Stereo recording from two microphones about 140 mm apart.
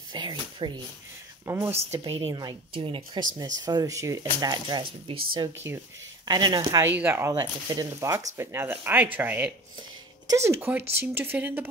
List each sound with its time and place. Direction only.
0.1 s speech: 35° right (ahead or behind)
1.4 s speech: 20° right (ahead or behind)
2.0 s speech: 40° right (ahead or behind)
3.6 s speech: 25° right (ahead or behind)
6.7 s speech: 15° right (ahead or behind)